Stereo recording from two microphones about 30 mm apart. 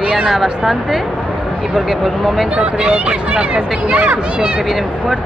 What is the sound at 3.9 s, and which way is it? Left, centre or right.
Speech, right.